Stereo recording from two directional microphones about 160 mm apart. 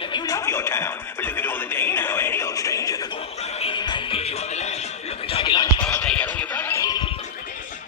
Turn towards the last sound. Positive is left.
turn(degrees=30)  # may be behind; listen again after turning